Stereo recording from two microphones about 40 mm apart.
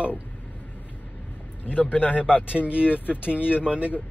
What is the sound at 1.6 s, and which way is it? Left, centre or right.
Speech, left.